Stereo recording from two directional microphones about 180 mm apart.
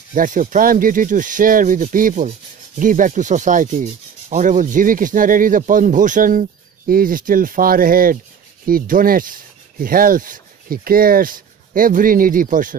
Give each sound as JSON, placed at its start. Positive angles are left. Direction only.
{"t": 0.1, "sound": "speech", "side_deg": -45}